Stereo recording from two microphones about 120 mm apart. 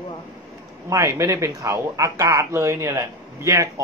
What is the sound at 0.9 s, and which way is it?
Speech, 25° right (ahead or behind).